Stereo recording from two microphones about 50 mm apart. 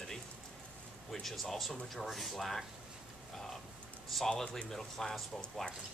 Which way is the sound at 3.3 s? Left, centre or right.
Centre.